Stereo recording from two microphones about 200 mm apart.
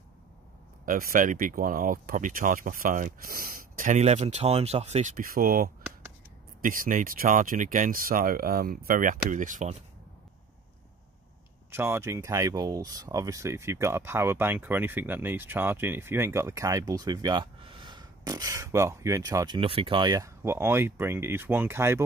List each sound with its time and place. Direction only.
0.8 s speech: 45° right (ahead or behind)
11.7 s speech: 10° right (ahead or behind)